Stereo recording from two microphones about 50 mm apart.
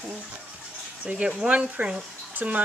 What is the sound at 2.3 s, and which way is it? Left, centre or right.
Speech, right.